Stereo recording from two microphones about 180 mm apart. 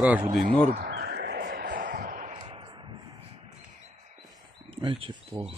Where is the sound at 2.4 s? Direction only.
25° right (ahead or behind).